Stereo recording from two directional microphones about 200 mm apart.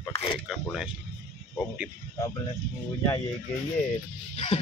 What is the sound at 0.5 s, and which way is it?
Speech, centre (ahead or behind).